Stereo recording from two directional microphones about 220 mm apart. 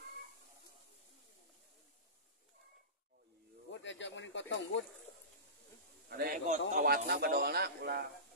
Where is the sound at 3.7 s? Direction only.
55° left (ahead or behind).